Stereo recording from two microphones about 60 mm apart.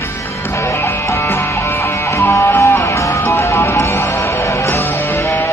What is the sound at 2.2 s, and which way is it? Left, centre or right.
Music, left.